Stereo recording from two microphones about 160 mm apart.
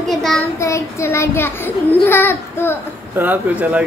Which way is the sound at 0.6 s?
20° left (ahead or behind).